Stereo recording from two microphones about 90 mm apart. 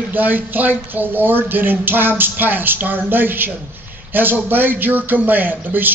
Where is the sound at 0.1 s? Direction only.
20° right (ahead or behind).